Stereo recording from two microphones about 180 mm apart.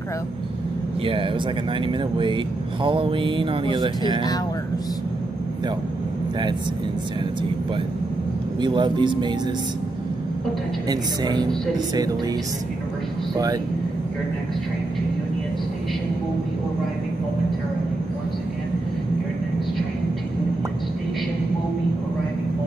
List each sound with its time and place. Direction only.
1.0 s speech: 30° right (ahead or behind)
8.5 s speech: 25° right (ahead or behind)
10.9 s speech: 25° right (ahead or behind)